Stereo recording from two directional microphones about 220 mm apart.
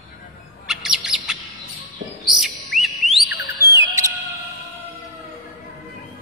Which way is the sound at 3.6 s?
15° right (ahead or behind).